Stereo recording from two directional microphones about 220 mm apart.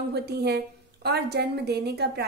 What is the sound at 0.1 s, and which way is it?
A woman's voice, 50° right (ahead or behind).